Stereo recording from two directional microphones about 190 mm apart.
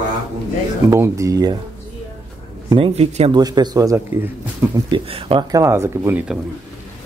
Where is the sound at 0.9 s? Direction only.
15° right (ahead or behind).